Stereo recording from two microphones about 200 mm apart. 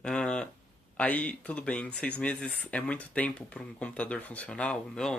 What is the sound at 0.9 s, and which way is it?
Speech, 5° left (ahead or behind).